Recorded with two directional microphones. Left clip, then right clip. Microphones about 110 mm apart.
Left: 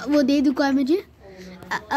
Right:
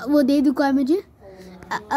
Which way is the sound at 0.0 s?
20° right (ahead or behind).